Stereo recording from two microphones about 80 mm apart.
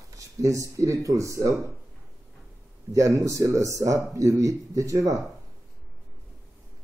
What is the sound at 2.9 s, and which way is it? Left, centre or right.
Speech, right.